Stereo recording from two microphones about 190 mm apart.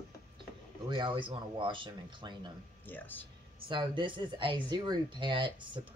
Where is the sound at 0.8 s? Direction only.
25° right (ahead or behind).